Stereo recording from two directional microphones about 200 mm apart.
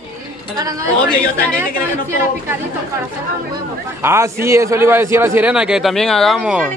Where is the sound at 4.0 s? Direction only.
10° right (ahead or behind).